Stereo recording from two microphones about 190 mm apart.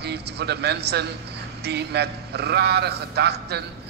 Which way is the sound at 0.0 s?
60° right (ahead or behind).